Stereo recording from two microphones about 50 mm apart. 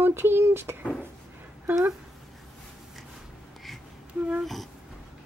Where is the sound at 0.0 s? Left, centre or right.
Right.